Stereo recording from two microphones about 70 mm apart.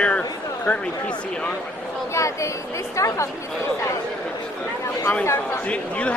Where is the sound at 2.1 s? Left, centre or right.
Left.